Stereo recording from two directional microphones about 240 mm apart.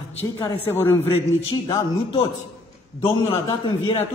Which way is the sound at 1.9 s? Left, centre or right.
Left.